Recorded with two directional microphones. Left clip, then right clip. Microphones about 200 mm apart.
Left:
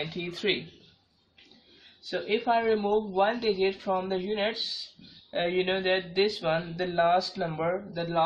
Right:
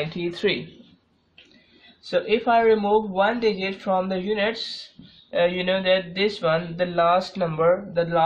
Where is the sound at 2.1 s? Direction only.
35° right (ahead or behind).